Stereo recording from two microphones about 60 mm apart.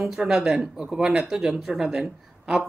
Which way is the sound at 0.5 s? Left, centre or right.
Centre.